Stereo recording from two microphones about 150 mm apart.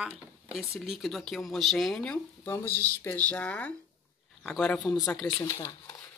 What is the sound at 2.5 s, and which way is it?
Speech, 15° left (ahead or behind).